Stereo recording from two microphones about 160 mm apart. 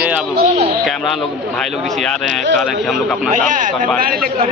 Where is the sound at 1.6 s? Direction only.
Centre (ahead or behind).